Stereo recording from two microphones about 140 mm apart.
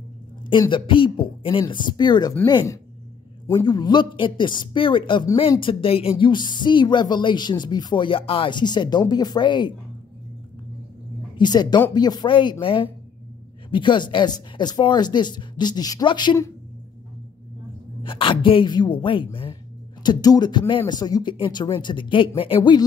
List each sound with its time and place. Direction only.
0.5 s speech: 35° left (ahead or behind)
11.3 s speech: 30° left (ahead or behind)
18.0 s speech: 35° left (ahead or behind)
22.6 s speech: 30° left (ahead or behind)